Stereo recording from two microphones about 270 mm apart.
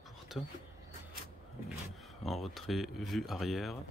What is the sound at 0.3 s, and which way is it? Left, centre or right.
Speech, centre.